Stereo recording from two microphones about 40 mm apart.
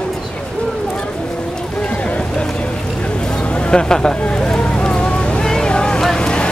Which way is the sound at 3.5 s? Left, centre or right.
Left.